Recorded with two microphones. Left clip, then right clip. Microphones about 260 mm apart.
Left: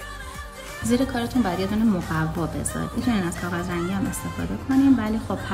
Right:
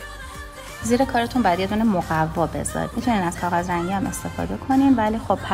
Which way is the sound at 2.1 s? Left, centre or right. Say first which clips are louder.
Right 6 dB; right.